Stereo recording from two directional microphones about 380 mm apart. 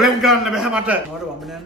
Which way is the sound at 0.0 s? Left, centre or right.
Centre.